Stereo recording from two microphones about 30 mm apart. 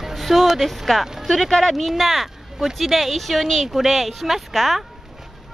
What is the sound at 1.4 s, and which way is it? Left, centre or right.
Speech, centre.